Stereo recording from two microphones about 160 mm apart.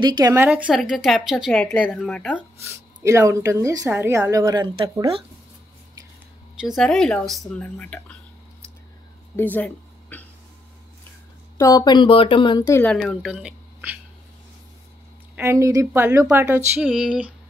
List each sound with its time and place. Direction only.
0.0 s speech: 25° right (ahead or behind)
0.5 s speech: 5° right (ahead or behind)
2.7 s speech: 20° right (ahead or behind)
6.6 s speech: centre (ahead or behind)
9.4 s speech: 10° left (ahead or behind)
11.5 s speech: 20° left (ahead or behind)
12.6 s speech: 15° left (ahead or behind)
12.9 s speech: centre (ahead or behind)
15.3 s speech: 15° right (ahead or behind)